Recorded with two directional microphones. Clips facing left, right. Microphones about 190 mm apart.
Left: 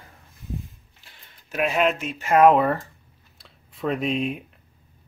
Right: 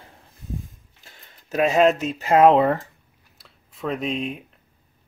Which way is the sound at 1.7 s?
40° right (ahead or behind).